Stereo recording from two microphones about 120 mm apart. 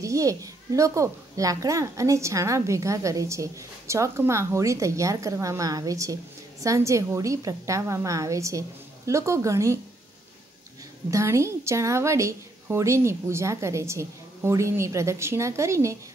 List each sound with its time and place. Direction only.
0.0 s a child's voice: 25° right (ahead or behind)
11.1 s a child's voice: 25° right (ahead or behind)